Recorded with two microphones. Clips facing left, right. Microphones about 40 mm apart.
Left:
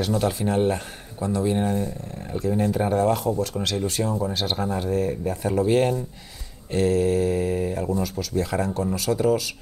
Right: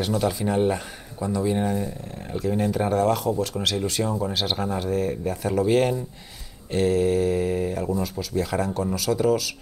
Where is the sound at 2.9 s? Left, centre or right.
Left.